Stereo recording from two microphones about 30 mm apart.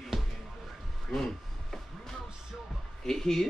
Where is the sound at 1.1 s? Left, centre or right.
Left.